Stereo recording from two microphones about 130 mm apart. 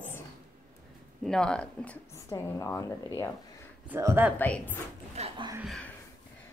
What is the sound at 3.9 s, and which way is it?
Speech, 15° right (ahead or behind).